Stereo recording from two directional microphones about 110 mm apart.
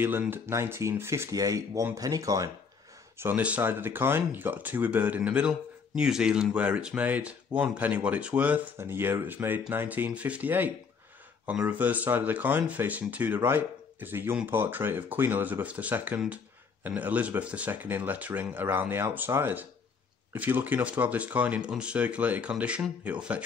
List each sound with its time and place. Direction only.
0.0 s speech: 20° right (ahead or behind)
3.2 s speech: 15° right (ahead or behind)